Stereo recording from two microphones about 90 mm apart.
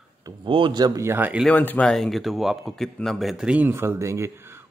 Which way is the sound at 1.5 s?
20° left (ahead or behind).